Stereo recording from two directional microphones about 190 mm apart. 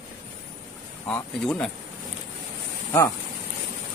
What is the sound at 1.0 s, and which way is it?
Speech, 5° left (ahead or behind).